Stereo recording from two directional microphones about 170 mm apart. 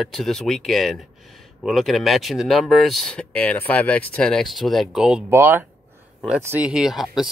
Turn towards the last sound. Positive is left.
turn(degrees=0)  # may be behind; listen again after turning